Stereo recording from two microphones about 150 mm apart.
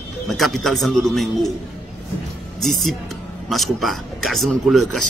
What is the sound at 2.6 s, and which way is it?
Speech, centre (ahead or behind).